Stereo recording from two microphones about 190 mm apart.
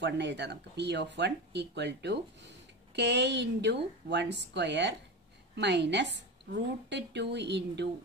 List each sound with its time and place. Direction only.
0.0 s speech: 65° right (ahead or behind)